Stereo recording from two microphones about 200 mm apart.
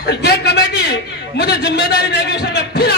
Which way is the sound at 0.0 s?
55° left (ahead or behind).